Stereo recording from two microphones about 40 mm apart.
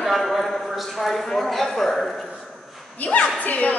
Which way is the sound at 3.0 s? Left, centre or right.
Left.